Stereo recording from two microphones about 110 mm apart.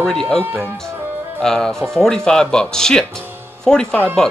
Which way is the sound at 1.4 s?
5° left (ahead or behind).